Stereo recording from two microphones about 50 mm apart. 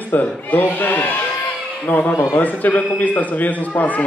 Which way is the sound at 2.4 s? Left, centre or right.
Left.